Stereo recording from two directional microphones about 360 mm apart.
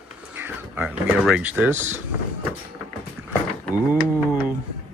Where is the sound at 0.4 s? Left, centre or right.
Centre.